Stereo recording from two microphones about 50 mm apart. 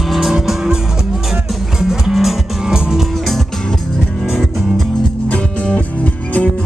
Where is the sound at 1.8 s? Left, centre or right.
Centre.